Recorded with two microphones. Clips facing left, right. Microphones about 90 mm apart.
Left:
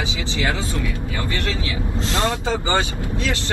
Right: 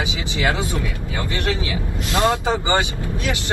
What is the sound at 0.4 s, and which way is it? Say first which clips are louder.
Speech: right 3 dB; 20° right (ahead or behind).